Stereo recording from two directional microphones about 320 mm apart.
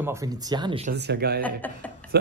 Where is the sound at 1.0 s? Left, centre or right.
Right.